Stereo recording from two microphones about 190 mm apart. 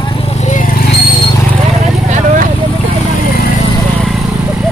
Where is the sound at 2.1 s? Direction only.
40° right (ahead or behind).